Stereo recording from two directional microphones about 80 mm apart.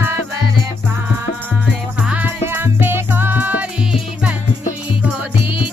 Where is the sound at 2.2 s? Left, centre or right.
Right.